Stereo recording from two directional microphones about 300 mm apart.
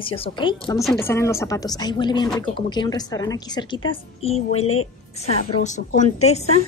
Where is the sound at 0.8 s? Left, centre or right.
Centre; by 6.5 s left.